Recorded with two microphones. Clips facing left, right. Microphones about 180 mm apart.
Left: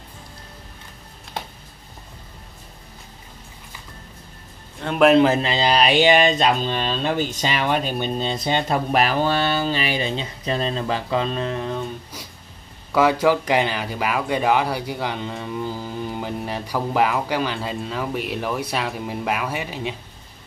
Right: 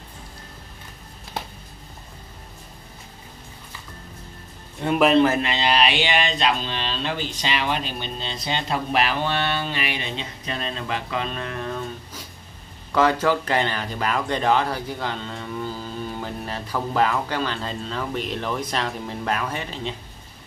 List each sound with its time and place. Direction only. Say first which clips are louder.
4.8 s a man's voice: left 3 dB; centre (ahead or behind)
5.1 s speech: left 2 dB; 15° left (ahead or behind)
5.4 s speech: left 2 dB; 35° left (ahead or behind); by 20.0 s 10° left (ahead or behind)